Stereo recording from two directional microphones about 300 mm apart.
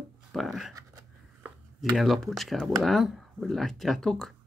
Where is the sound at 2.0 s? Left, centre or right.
Centre.